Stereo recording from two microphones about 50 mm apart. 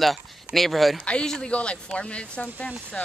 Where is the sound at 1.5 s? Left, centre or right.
Left.